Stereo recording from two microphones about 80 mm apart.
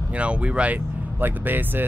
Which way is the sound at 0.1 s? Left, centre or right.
Centre.